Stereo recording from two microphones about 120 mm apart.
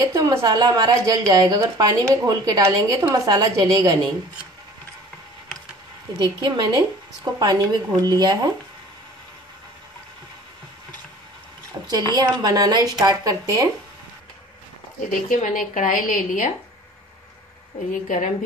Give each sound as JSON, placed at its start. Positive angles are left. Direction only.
{"t": 0.0, "sound": "a woman's voice", "side_deg": -30}
{"t": 6.2, "sound": "a woman's voice", "side_deg": -40}
{"t": 12.2, "sound": "a woman's voice", "side_deg": -35}
{"t": 15.0, "sound": "a woman's voice", "side_deg": 90}
{"t": 18.0, "sound": "a woman's voice", "side_deg": 90}